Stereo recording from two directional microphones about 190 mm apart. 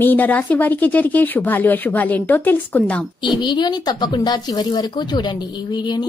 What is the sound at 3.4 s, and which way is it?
Speech, 25° left (ahead or behind).